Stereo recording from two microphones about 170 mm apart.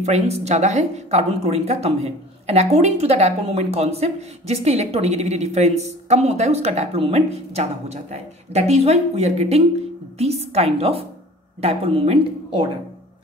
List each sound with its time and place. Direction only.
0.0 s speech: 40° right (ahead or behind)